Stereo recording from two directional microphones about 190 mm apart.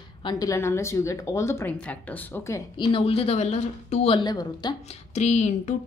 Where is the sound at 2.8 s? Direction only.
30° left (ahead or behind).